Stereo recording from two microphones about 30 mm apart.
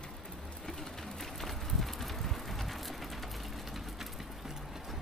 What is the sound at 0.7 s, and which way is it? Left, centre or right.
Vehicle, centre.